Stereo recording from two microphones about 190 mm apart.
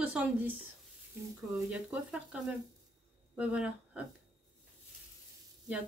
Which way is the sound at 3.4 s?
5° right (ahead or behind).